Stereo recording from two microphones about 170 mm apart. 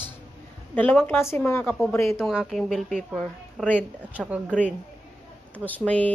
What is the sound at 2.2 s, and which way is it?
Speech, centre (ahead or behind).